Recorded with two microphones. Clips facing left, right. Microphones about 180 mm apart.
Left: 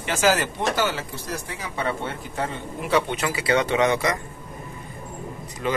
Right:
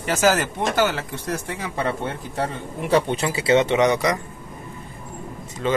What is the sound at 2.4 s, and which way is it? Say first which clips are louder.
Speech: right 2 dB; 35° right (ahead or behind).